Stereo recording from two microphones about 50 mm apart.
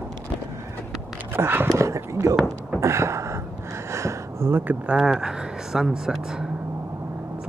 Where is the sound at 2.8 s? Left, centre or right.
Right.